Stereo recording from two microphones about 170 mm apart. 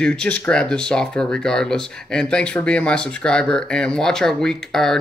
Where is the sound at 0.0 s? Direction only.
5° left (ahead or behind).